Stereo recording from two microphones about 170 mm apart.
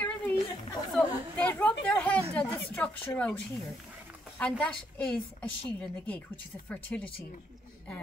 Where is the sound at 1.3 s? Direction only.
10° left (ahead or behind).